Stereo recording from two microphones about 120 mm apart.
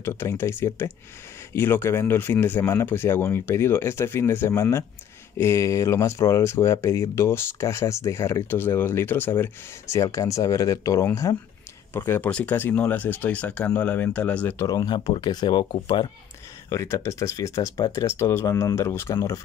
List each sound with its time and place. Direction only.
0.0 s speech: 20° left (ahead or behind)
11.9 s speech: 15° left (ahead or behind)
14.6 s speech: 30° left (ahead or behind)
16.6 s speech: 25° left (ahead or behind)